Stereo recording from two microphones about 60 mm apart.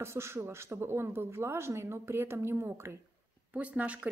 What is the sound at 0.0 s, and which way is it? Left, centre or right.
A woman's voice, right.